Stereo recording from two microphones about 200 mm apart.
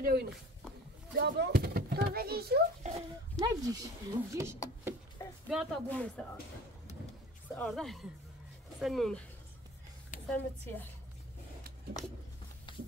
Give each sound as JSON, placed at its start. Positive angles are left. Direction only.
{"t": 0.0, "sound": "a child's voice", "side_deg": -50}
{"t": 2.8, "sound": "speech", "side_deg": -35}
{"t": 3.3, "sound": "speech", "side_deg": -20}
{"t": 5.5, "sound": "speech", "side_deg": 5}
{"t": 7.5, "sound": "speech", "side_deg": 0}
{"t": 10.2, "sound": "a woman's voice", "side_deg": 10}